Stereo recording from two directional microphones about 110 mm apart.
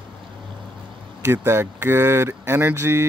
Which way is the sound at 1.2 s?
20° right (ahead or behind).